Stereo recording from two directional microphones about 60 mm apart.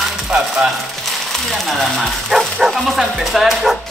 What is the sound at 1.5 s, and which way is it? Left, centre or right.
Speech, centre.